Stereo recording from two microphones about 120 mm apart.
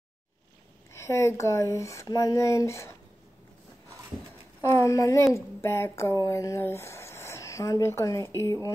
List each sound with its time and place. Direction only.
0.9 s speech: 25° left (ahead or behind)
4.6 s speech: 25° left (ahead or behind)